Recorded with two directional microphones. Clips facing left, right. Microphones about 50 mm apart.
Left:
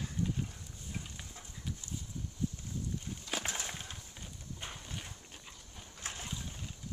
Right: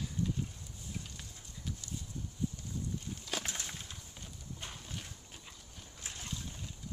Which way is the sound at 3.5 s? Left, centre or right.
Left.